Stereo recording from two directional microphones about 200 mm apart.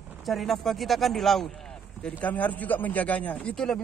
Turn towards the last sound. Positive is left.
turn(degrees=5)  # may be behind; listen again after turning